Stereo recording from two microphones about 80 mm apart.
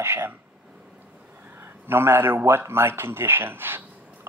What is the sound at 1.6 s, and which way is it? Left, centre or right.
Speech, right.